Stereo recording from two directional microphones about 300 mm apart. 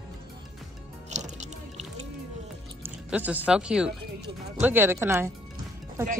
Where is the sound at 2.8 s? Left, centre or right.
Centre.